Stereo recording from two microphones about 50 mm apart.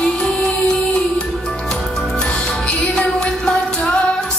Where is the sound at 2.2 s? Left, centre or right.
Left.